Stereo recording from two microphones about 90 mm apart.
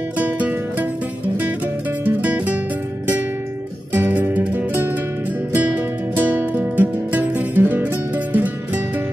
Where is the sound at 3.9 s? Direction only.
20° right (ahead or behind).